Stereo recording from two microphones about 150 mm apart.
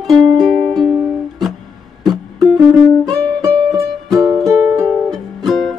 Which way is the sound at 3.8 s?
25° right (ahead or behind).